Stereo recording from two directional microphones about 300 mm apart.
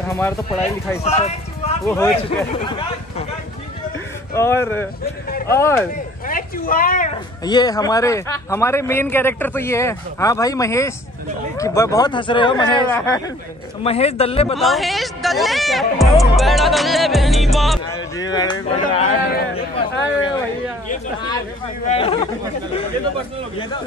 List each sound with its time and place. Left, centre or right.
0.1 s speech: centre
1.0 s a sound: left
2.2 s speech: centre
4.3 s speech: centre
6.2 s a sound: left
7.4 s a man's voice: centre
14.6 s speech: centre
18.1 s speech: centre
21.8 s a man's voice: centre